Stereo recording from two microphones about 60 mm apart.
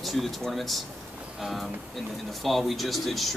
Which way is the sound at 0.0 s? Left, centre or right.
Centre.